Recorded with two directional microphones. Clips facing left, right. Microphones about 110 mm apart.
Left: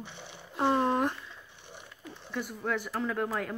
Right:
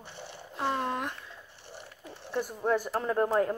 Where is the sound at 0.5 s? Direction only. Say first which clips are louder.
Left 5 dB; 20° left (ahead or behind).